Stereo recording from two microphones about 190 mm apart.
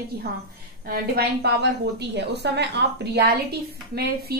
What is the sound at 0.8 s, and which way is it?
A woman's voice, 55° right (ahead or behind).